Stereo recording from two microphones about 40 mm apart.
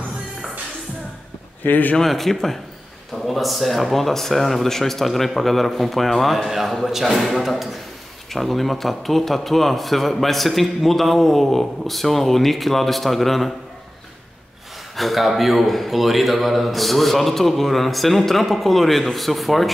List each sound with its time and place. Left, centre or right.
1.6 s speech: left
2.0 s a man's voice: centre
15.0 s a man's voice: centre